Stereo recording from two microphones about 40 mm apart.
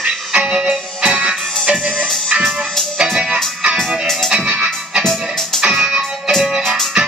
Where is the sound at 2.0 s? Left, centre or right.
Centre.